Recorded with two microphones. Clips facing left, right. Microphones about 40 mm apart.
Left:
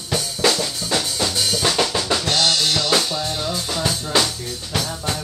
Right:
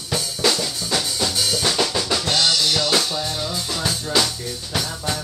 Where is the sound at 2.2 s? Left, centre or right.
Centre.